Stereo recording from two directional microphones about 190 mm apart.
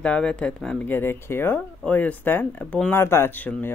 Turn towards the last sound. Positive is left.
turn(degrees=10)  # may be behind; listen again after turning